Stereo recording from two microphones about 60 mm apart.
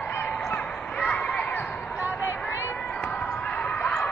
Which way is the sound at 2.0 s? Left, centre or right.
Right.